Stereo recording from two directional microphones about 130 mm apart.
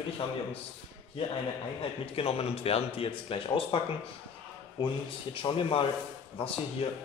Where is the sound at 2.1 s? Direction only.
50° left (ahead or behind).